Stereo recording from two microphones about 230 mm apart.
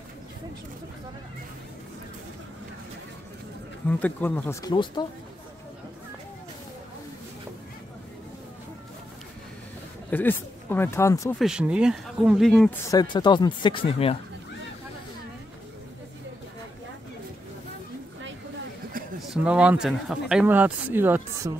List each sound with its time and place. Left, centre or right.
4.0 s speech: centre
10.1 s speech: centre
11.3 s speech: centre
12.9 s speech: centre
19.3 s speech: centre